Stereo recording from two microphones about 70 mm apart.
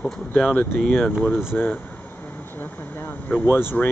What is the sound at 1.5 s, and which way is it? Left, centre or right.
Speech, centre.